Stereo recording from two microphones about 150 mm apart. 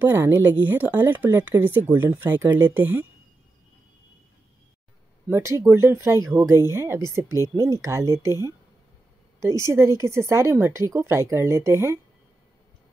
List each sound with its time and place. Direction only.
0.0 s speech: 15° right (ahead or behind)
5.3 s speech: 20° right (ahead or behind)